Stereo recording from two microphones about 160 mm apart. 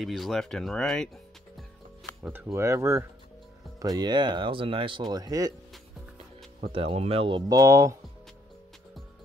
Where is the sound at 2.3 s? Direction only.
15° right (ahead or behind); by 5.0 s 30° right (ahead or behind).